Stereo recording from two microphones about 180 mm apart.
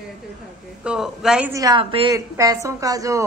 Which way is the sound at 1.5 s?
20° right (ahead or behind).